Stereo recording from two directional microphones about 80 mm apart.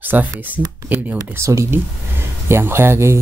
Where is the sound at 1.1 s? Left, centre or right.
Right.